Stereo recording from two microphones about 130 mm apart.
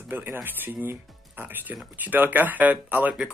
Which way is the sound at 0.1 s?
15° right (ahead or behind).